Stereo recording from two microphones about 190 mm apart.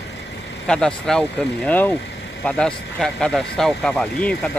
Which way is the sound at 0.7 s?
5° left (ahead or behind).